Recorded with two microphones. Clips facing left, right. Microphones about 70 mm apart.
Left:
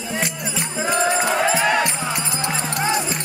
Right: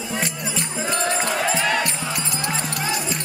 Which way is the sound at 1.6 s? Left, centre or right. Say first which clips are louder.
Left 3 dB; centre.